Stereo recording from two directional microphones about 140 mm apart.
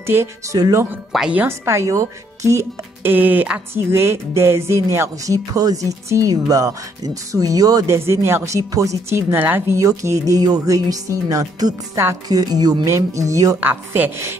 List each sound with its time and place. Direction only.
0.0 s speech: 20° right (ahead or behind)
1.1 s speech: 5° right (ahead or behind); by 13.6 s 25° right (ahead or behind)
13.6 s speech: 10° right (ahead or behind)